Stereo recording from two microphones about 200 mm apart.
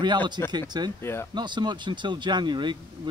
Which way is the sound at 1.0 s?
15° left (ahead or behind).